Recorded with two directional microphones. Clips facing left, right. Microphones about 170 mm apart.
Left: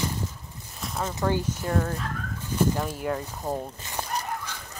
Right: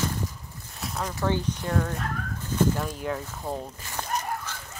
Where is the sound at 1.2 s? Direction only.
5° left (ahead or behind).